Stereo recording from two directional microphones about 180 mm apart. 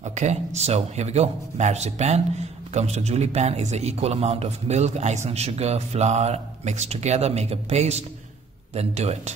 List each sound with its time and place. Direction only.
0.0 s a man's voice: 40° right (ahead or behind)